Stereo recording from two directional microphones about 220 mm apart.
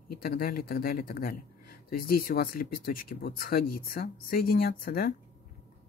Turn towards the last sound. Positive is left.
turn(degrees=40)  # may be behind; listen again after turning